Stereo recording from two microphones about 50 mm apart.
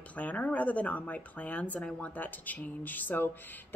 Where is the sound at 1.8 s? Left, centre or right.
Left.